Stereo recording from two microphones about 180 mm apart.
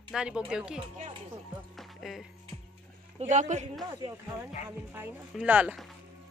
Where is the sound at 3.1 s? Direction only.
45° right (ahead or behind).